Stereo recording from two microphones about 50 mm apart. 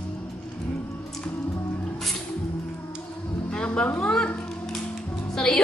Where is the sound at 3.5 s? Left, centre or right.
Left.